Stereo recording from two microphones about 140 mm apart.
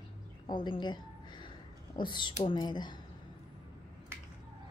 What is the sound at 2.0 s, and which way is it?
Speech, 35° left (ahead or behind).